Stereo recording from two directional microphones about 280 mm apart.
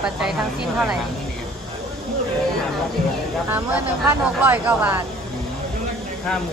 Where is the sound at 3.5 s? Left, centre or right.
Centre.